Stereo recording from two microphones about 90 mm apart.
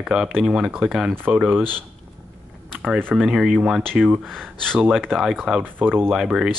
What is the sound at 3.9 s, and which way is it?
Speech, 15° right (ahead or behind).